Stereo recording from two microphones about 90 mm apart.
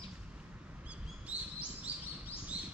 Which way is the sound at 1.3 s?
15° right (ahead or behind).